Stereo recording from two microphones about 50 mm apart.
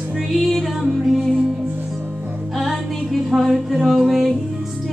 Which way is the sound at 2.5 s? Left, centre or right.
Centre.